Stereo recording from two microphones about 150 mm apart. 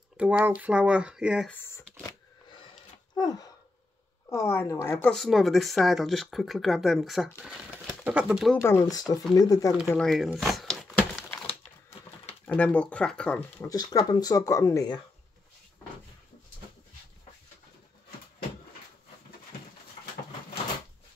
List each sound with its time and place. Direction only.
0.2 s speech: 10° right (ahead or behind)
1.5 s a sound: 15° left (ahead or behind)
4.3 s speech: 15° left (ahead or behind)
5.1 s speech: centre (ahead or behind)
8.5 s speech: 15° left (ahead or behind)
9.9 s speech: centre (ahead or behind)
10.4 s a sound: centre (ahead or behind)
12.4 s speech: 10° left (ahead or behind)
13.9 s speech: 25° left (ahead or behind)